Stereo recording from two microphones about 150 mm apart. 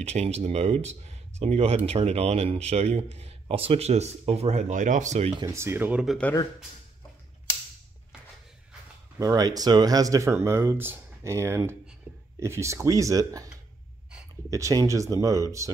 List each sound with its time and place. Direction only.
0.0 s speech: 45° right (ahead or behind)
5.4 s speech: 20° right (ahead or behind)
9.2 s speech: 25° right (ahead or behind)
14.5 s speech: 25° right (ahead or behind)